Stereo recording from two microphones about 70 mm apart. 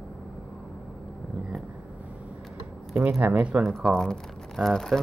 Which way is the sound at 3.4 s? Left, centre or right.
Centre.